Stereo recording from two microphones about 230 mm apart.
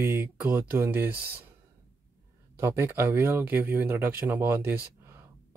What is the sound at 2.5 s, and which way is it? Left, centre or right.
Speech, centre.